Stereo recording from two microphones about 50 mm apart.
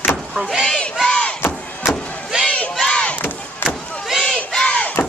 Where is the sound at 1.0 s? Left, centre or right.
Centre.